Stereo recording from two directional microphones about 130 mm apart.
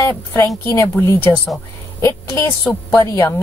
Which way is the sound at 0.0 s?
25° left (ahead or behind).